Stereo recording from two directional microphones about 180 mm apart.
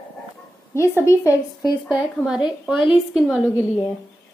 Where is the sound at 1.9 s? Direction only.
5° right (ahead or behind).